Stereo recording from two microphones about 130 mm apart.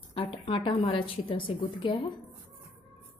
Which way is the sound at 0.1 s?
45° left (ahead or behind).